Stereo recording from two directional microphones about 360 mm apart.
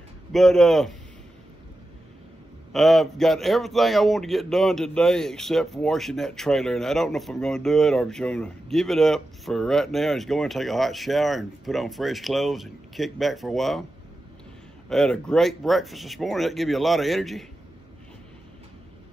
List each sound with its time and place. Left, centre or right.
0.3 s a man's voice: centre
2.7 s a man's voice: centre
14.9 s a man's voice: centre